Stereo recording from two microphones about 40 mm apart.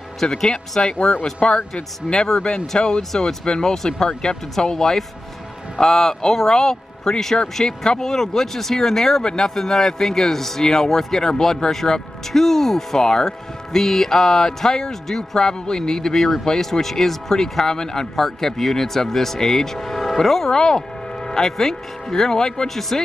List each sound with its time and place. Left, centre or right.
0.2 s speech: centre
1.5 s a man's voice: left
3.0 s speech: centre